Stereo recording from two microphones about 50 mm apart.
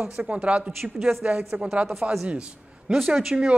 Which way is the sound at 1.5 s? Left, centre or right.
Right.